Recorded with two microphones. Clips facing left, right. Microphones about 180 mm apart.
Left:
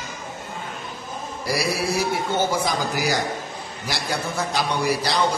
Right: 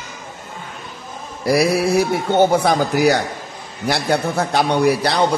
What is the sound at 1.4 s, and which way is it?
A man's voice, 60° right (ahead or behind).